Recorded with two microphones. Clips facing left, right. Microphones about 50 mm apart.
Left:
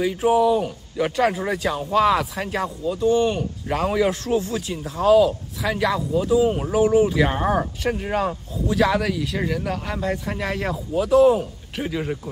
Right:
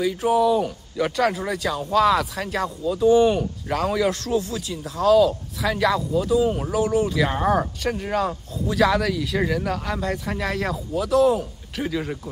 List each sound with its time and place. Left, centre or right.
0.3 s speech: centre
3.0 s speech: centre
3.7 s speech: centre
4.4 s speech: left
5.6 s a man's voice: centre